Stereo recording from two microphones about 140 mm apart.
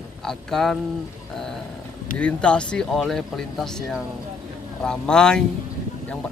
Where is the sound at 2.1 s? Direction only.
10° left (ahead or behind).